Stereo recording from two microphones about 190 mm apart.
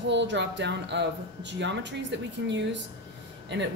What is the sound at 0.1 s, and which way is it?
Speech, 70° right (ahead or behind).